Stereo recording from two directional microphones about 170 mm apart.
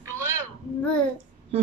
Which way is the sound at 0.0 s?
15° right (ahead or behind).